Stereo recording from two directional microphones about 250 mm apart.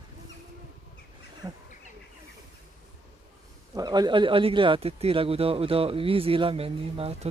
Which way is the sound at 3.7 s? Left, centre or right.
Centre.